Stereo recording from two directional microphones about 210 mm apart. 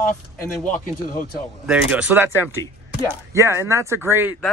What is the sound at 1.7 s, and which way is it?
Speech, 5° right (ahead or behind).